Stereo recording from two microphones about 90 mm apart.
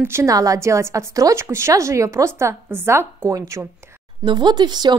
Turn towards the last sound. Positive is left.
turn(degrees=-55)  # may be behind; listen again after turning